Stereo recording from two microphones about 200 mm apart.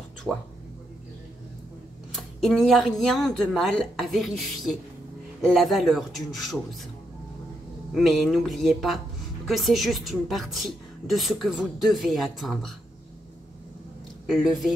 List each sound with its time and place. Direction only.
0.3 s a woman's voice: centre (ahead or behind)
2.1 s a woman's voice: centre (ahead or behind)
7.9 s a woman's voice: centre (ahead or behind)
14.2 s speech: centre (ahead or behind)